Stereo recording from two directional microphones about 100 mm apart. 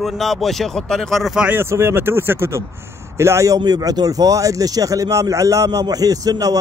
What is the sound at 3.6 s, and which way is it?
Speech, 40° right (ahead or behind).